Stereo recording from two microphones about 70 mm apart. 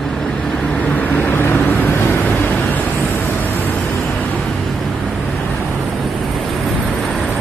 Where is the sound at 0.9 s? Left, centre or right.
Left.